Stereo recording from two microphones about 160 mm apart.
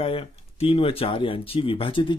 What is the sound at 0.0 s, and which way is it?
Speech, 35° left (ahead or behind).